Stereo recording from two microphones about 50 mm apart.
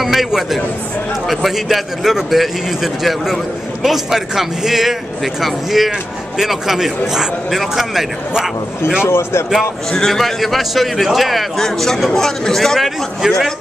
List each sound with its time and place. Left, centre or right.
0.0 s a man's voice: centre
9.0 s a man's voice: left
9.8 s a man's voice: centre